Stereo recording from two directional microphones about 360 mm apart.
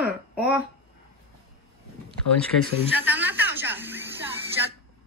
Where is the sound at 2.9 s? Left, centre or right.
Centre.